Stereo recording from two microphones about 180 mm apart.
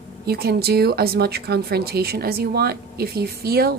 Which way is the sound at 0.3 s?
60° right (ahead or behind).